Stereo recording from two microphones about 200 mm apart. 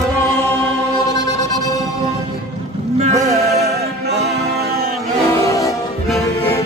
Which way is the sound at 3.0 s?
35° right (ahead or behind).